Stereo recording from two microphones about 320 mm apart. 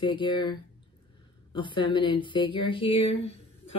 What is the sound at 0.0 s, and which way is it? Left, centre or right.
Speech, centre.